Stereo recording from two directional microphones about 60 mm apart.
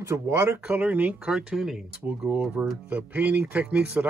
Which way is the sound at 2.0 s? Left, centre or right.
Right.